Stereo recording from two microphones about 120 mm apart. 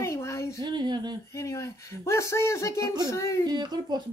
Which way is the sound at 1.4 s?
25° left (ahead or behind).